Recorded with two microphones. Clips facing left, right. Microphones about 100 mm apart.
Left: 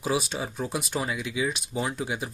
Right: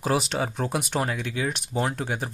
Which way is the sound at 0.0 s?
65° right (ahead or behind).